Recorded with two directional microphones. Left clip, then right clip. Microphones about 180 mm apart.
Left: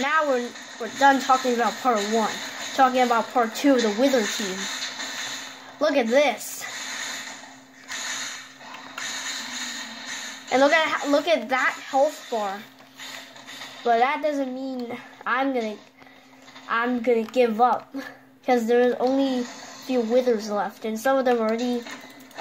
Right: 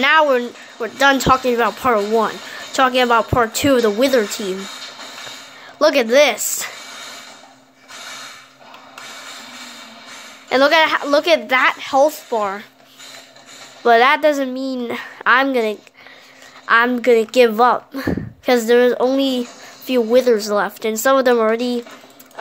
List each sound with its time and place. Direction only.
0.0 s speech: 40° right (ahead or behind)
5.8 s speech: 35° right (ahead or behind)
10.5 s speech: 35° right (ahead or behind)
13.8 s speech: 45° right (ahead or behind)